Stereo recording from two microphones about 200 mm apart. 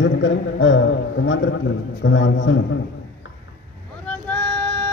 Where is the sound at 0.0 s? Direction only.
65° left (ahead or behind).